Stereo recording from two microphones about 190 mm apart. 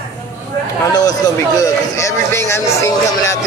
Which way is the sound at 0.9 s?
20° left (ahead or behind).